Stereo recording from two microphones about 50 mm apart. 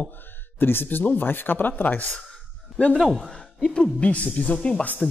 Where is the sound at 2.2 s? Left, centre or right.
Centre.